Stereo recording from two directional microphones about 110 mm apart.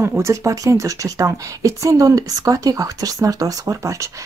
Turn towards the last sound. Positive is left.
turn(degrees=-30)  # may be behind; listen again after turning